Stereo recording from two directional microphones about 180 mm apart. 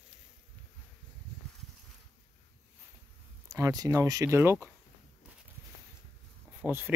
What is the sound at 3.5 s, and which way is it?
Speech, 20° right (ahead or behind).